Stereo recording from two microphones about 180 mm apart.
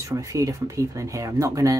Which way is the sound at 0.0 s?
15° right (ahead or behind).